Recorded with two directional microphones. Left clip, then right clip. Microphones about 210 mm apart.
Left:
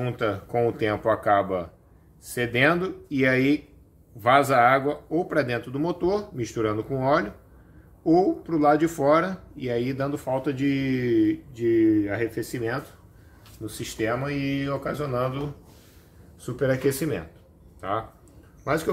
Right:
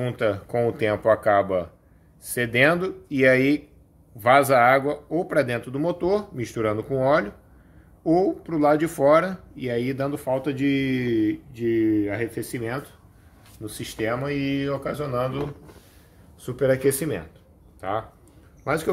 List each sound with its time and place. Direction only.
0.0 s speech: 40° right (ahead or behind)
16.4 s a man's voice: 30° right (ahead or behind)